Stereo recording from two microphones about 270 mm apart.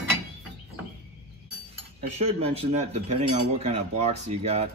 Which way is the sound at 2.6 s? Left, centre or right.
Right.